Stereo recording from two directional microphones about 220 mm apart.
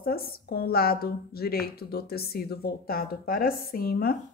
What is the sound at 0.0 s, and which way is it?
A woman's voice, 45° left (ahead or behind).